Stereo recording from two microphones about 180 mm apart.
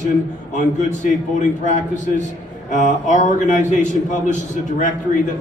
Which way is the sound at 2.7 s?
45° left (ahead or behind).